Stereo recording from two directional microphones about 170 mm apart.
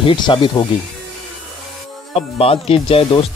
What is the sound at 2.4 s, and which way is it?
Speech, 35° left (ahead or behind).